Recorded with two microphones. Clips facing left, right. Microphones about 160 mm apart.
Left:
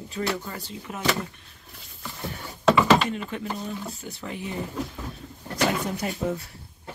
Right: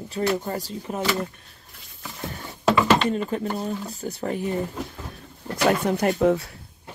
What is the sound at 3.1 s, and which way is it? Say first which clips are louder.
Speech: right 6 dB; 40° right (ahead or behind).